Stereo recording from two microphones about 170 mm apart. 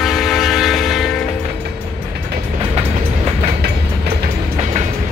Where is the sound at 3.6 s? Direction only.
70° right (ahead or behind).